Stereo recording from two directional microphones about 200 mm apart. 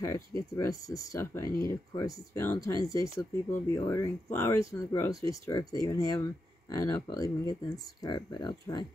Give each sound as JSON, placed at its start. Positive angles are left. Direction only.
{"t": 0.0, "sound": "speech", "side_deg": 15}